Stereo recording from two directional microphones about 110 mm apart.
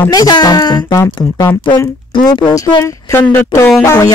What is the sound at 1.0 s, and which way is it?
Speech, 20° left (ahead or behind).